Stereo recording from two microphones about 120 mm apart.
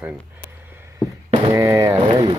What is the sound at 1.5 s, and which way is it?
Speech, 25° right (ahead or behind).